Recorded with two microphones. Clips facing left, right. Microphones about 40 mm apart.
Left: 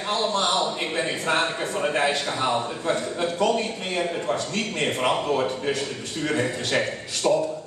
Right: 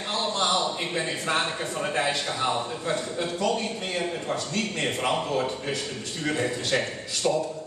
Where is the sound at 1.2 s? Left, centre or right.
Centre.